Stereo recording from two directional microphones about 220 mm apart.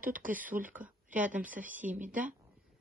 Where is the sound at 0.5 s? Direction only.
5° right (ahead or behind).